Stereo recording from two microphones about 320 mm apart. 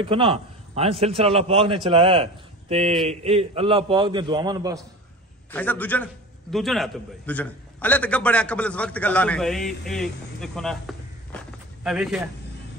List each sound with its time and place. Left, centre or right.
0.0 s a man's voice: centre
5.5 s a man's voice: centre